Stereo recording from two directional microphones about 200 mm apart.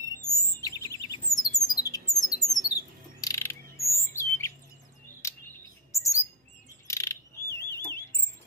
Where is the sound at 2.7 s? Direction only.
15° left (ahead or behind).